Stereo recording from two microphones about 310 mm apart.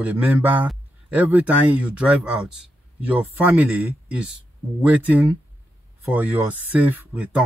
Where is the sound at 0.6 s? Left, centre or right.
Centre.